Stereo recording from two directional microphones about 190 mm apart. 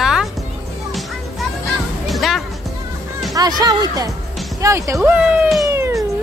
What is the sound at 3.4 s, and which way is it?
Speech, 20° right (ahead or behind).